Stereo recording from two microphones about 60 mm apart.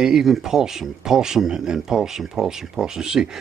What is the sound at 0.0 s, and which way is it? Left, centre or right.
Speech, centre.